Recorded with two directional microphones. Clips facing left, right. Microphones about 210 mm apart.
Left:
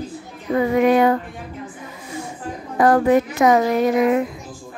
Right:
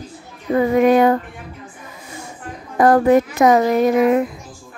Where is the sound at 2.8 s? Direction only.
45° right (ahead or behind).